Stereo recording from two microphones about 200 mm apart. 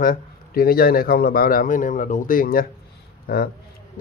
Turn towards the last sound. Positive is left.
turn(degrees=50)  # may be behind; listen again after turning